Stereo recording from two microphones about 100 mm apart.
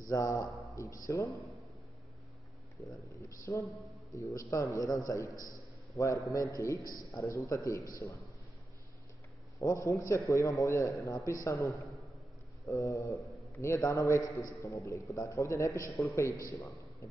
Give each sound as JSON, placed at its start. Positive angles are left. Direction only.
{"t": 0.0, "sound": "a man's voice", "side_deg": 35}
{"t": 2.9, "sound": "a man's voice", "side_deg": 30}
{"t": 9.6, "sound": "a man's voice", "side_deg": 30}